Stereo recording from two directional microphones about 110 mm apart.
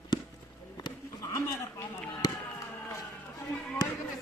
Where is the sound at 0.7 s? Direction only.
40° left (ahead or behind).